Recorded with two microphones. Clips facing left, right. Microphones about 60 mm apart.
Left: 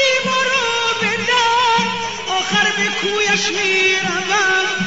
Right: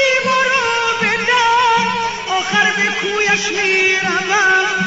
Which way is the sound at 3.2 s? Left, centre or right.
Right.